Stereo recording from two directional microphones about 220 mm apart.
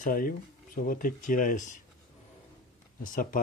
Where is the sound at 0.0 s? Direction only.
40° left (ahead or behind).